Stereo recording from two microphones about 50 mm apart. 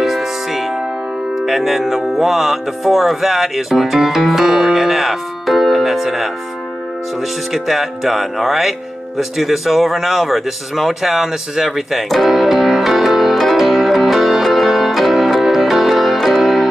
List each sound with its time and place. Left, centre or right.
0.0 s music: centre
1.4 s speech: centre
7.5 s speech: centre
13.6 s music: centre